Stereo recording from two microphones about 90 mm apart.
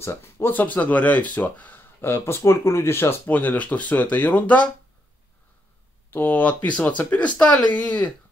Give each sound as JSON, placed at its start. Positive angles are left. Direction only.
{"t": 0.0, "sound": "speech", "side_deg": 30}
{"t": 6.0, "sound": "speech", "side_deg": 25}